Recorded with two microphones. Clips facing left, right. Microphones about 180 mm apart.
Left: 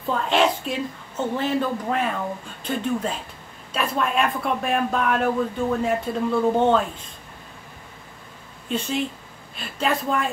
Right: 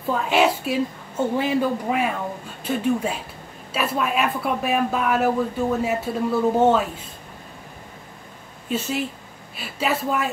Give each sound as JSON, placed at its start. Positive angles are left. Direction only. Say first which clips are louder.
{"t": 0.1, "sound": "a woman's voice", "louder": "right 1 dB", "side_deg": -5}
{"t": 8.6, "sound": "speech", "louder": "even", "side_deg": -5}